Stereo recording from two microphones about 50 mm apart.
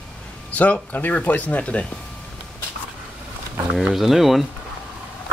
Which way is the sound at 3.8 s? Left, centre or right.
Centre.